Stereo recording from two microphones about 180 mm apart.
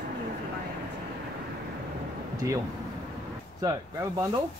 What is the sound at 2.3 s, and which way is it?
Speech, 20° right (ahead or behind).